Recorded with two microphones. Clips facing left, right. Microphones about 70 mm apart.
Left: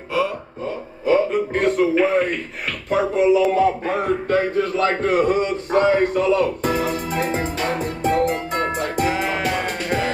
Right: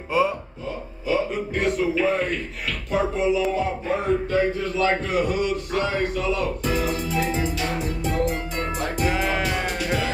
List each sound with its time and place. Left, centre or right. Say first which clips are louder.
1.0 s music: left 6 dB; left
2.9 s a sound: left 5 dB; left
3.5 s music: left 6 dB; left
5.0 s music: left 5 dB; left
9.0 s music: left 1 dB; centre